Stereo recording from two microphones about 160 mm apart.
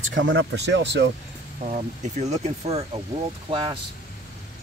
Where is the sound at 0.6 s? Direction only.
90° right.